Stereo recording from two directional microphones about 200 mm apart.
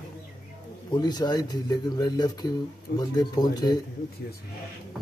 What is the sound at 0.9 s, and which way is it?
Speech, 20° left (ahead or behind).